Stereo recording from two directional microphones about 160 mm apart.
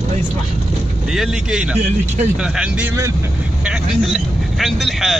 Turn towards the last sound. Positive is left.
turn(degrees=0)  # may be behind; listen again after turning